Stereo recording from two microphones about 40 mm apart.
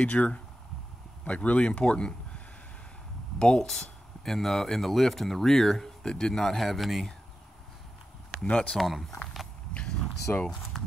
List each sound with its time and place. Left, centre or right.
0.2 s speech: left
1.2 s speech: left; by 7.2 s centre
8.5 s speech: left
8.7 s speech: centre
10.3 s speech: left
10.8 s a sound: centre